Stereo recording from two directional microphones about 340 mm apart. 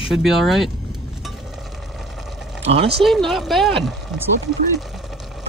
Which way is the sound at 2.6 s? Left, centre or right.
Centre.